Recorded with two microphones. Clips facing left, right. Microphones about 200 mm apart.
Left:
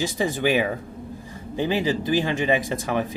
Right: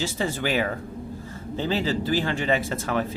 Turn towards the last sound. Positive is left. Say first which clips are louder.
# left 1 dB
turn(degrees=15)  # may be behind; listen again after turning